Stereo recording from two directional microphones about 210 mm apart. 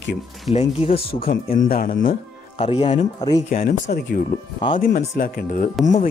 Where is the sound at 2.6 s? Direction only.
25° left (ahead or behind).